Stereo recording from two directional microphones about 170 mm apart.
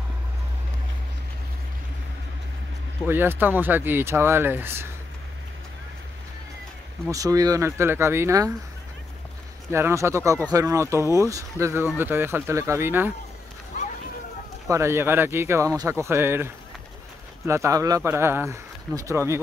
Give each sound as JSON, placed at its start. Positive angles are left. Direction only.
{"t": 3.1, "sound": "speech", "side_deg": -10}
{"t": 7.1, "sound": "speech", "side_deg": -20}
{"t": 9.7, "sound": "speech", "side_deg": -15}
{"t": 14.7, "sound": "speech", "side_deg": -15}